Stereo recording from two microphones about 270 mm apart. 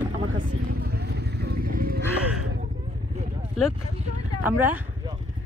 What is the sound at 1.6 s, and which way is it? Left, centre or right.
Livestock, right.